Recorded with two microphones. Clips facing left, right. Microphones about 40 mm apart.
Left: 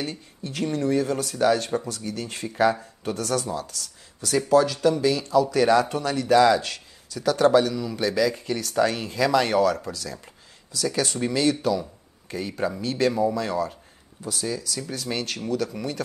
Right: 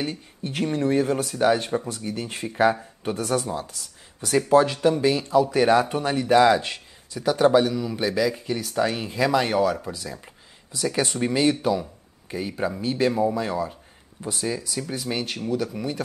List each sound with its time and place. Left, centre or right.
0.0 s speech: right
11.8 s speech: centre
14.2 s speech: right